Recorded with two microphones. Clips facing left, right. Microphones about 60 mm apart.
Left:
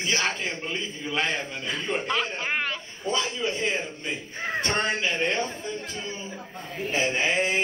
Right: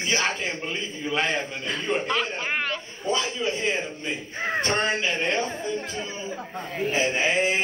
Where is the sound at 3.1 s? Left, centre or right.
Centre.